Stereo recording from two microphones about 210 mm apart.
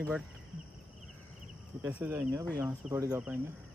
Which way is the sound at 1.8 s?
10° right (ahead or behind).